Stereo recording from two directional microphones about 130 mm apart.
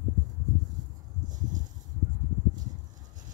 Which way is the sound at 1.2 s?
80° right.